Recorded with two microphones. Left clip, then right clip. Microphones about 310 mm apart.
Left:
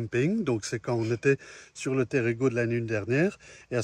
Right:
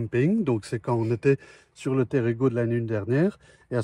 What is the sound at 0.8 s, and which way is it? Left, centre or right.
Speech, centre.